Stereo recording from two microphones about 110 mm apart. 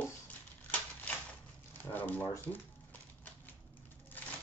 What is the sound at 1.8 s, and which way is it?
Speech, 15° left (ahead or behind).